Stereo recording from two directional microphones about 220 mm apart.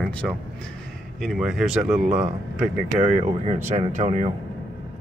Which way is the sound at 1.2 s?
Centre (ahead or behind).